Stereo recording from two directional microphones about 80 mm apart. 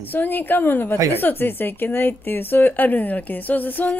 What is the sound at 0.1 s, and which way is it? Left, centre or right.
A woman's voice, left.